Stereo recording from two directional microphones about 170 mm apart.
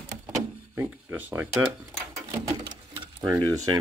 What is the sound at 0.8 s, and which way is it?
Speech, 10° right (ahead or behind).